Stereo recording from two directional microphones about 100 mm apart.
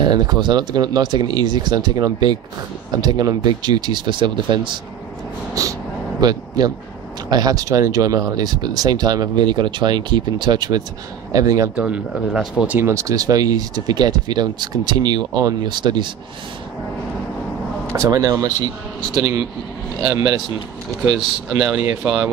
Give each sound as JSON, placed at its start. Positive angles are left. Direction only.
{"t": 0.0, "sound": "speech", "side_deg": -45}
{"t": 5.5, "sound": "a sound", "side_deg": -35}
{"t": 6.2, "sound": "speech", "side_deg": -40}
{"t": 11.7, "sound": "speech", "side_deg": -10}
{"t": 12.6, "sound": "speech", "side_deg": -20}
{"t": 12.9, "sound": "speech", "side_deg": -35}
{"t": 17.9, "sound": "speech", "side_deg": -35}
{"t": 20.0, "sound": "speech", "side_deg": -40}
{"t": 21.5, "sound": "speech", "side_deg": -5}